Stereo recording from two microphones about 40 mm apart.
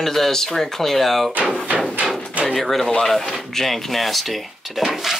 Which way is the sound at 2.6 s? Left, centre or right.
Centre.